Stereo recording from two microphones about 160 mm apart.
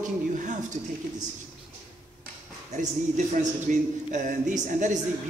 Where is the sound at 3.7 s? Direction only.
55° right (ahead or behind).